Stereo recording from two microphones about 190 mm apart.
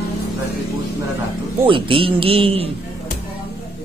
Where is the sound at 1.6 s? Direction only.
25° right (ahead or behind).